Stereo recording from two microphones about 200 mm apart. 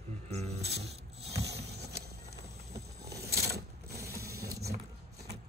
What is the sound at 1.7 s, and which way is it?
Vehicle, 55° right (ahead or behind).